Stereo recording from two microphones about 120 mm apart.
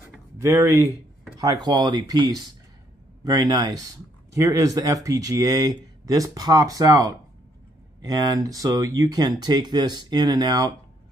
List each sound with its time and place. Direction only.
0.4 s speech: 25° right (ahead or behind)